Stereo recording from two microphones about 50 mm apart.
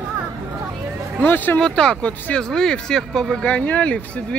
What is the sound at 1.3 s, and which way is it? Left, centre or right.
Speech, left.